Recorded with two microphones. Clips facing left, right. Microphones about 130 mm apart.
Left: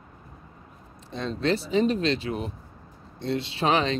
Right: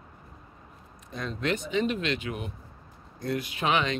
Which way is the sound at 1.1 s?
30° left (ahead or behind).